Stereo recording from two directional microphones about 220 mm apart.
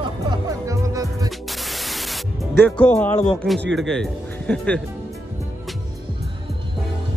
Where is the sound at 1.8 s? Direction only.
Centre (ahead or behind).